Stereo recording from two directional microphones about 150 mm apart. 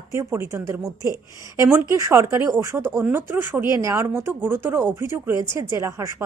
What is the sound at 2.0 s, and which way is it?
Speech, 20° right (ahead or behind).